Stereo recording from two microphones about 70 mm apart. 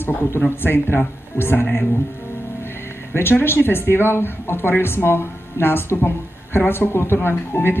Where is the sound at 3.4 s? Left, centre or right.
Left.